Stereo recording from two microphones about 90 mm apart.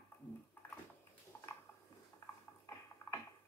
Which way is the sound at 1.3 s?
20° left (ahead or behind).